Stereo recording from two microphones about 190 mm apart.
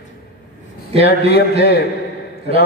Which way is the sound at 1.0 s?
55° left (ahead or behind).